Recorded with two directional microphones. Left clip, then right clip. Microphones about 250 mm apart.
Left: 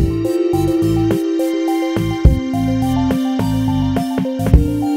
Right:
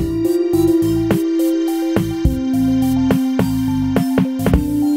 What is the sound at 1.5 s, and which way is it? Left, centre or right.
Music, centre.